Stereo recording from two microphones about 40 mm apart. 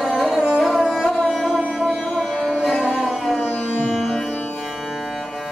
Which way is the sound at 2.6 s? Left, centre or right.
Centre.